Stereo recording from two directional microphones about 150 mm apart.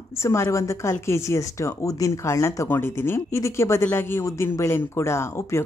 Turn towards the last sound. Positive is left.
turn(degrees=15)  # may be behind; listen again after turning